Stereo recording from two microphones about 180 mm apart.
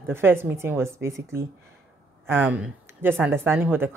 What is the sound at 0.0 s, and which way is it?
Speech, 15° right (ahead or behind).